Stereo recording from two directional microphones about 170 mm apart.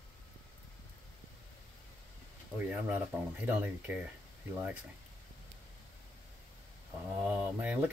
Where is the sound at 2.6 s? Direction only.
10° right (ahead or behind).